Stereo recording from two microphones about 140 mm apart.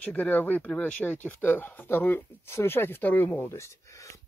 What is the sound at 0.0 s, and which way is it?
Speech, 10° left (ahead or behind).